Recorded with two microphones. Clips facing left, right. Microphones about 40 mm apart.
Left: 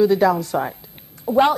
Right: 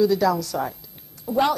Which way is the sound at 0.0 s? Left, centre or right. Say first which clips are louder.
Left 4 dB; left.